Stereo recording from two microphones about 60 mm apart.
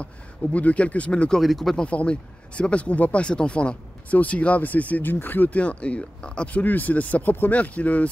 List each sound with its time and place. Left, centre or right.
0.0 s speech: left
1.4 s speech: centre
1.8 s speech: centre